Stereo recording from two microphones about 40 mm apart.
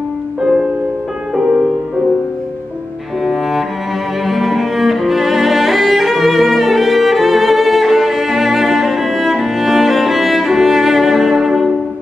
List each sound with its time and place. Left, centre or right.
0.4 s music: centre
3.3 s cello: centre